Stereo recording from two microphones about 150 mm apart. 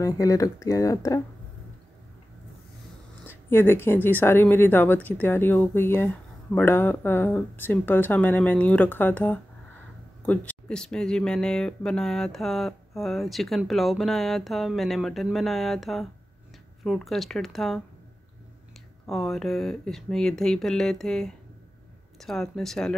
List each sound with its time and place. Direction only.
0.0 s speech: 25° left (ahead or behind)
3.3 s a woman's voice: 15° left (ahead or behind)
19.0 s speech: centre (ahead or behind)